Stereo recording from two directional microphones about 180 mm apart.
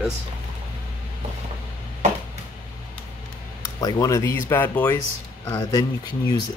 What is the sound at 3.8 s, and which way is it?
Speech, 20° left (ahead or behind).